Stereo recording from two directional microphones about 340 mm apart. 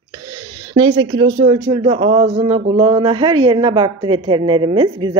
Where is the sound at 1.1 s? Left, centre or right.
Right.